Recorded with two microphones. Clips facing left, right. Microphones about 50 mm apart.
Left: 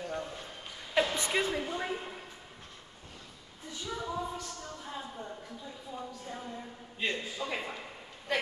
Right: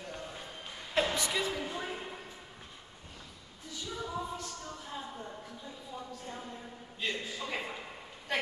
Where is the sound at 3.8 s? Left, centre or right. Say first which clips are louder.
Left 2 dB; centre.